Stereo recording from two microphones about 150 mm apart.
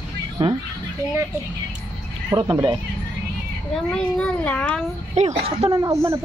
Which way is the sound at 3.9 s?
5° left (ahead or behind).